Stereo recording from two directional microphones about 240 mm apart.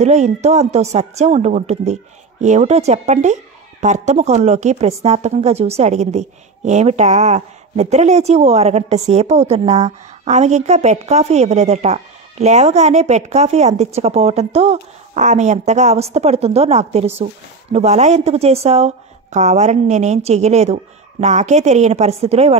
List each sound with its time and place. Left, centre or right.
0.0 s a woman's voice: right